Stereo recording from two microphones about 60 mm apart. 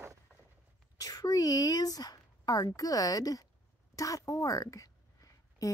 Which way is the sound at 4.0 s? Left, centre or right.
Left.